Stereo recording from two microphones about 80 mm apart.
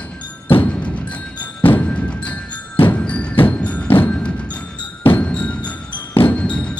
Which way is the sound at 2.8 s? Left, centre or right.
Centre.